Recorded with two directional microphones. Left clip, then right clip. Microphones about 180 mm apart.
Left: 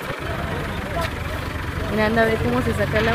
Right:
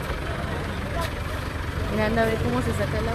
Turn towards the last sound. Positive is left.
turn(degrees=30)  # may be behind; listen again after turning